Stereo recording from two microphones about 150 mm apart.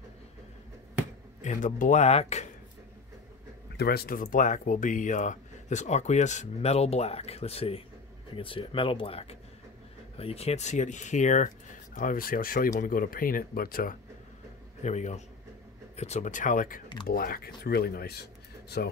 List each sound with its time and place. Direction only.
1.4 s speech: 55° left (ahead or behind)
3.7 s speech: 90° left
14.8 s speech: 50° left (ahead or behind)
17.1 s speech: 75° left (ahead or behind)
17.6 s speech: 90° left